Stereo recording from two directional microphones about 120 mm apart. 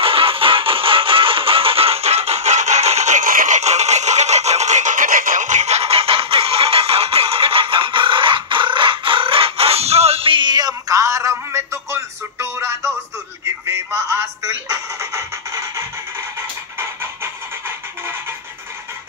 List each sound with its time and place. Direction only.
0.0 s music: 50° right (ahead or behind); by 18.1 s 20° right (ahead or behind)